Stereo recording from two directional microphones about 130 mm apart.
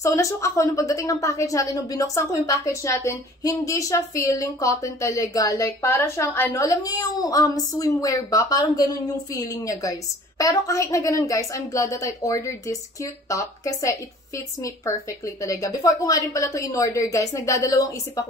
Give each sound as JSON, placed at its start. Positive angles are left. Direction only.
{"t": 0.0, "sound": "a woman's voice", "side_deg": 25}